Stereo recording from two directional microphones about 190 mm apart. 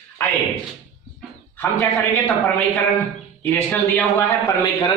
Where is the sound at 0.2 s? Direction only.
10° left (ahead or behind).